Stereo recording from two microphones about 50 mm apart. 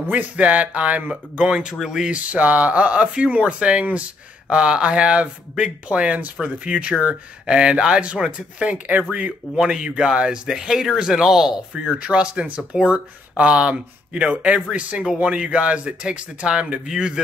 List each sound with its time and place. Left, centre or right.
0.1 s speech: right
1.5 s speech: centre
2.1 s speech: right
9.6 s speech: centre
11.7 s speech: centre